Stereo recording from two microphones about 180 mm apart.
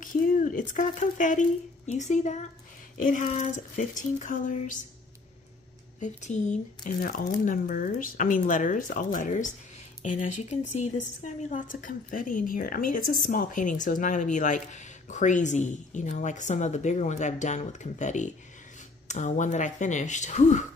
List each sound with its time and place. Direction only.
0.0 s speech: 45° left (ahead or behind)
5.9 s speech: 40° left (ahead or behind)